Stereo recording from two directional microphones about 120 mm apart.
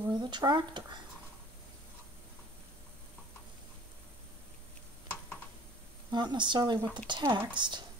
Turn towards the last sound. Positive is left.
turn(degrees=-40)  # may be behind; listen again after turning